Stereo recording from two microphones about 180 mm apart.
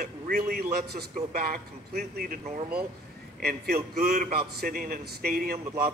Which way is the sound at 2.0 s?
45° right (ahead or behind).